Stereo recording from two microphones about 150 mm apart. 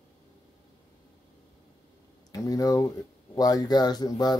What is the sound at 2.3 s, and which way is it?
Speech, 25° left (ahead or behind).